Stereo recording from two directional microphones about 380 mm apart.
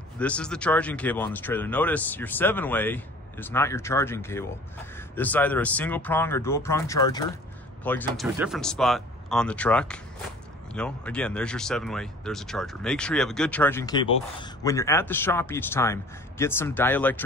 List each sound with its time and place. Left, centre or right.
0.2 s speech: centre